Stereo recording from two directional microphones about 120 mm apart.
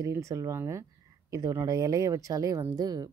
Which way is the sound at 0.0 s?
25° right (ahead or behind).